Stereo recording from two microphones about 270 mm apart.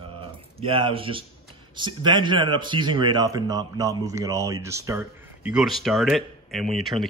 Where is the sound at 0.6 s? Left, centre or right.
Centre.